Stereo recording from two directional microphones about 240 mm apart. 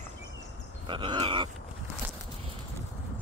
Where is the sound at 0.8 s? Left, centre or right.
Centre.